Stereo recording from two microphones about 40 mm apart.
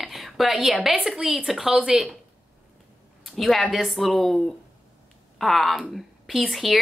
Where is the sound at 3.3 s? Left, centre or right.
Centre.